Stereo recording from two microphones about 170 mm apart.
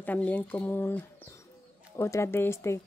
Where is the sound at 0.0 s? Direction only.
10° left (ahead or behind).